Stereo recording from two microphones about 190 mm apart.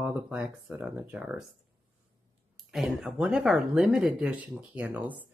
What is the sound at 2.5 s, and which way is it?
Speech, 5° right (ahead or behind).